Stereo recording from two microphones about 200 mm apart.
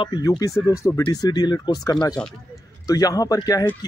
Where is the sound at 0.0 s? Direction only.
20° left (ahead or behind).